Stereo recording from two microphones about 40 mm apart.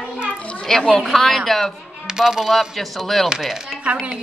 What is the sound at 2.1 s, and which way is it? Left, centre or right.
Coin, centre.